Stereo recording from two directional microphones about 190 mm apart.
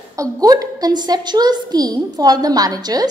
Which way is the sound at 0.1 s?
20° right (ahead or behind).